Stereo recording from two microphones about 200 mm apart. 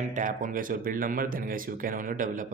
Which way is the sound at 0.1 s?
40° right (ahead or behind).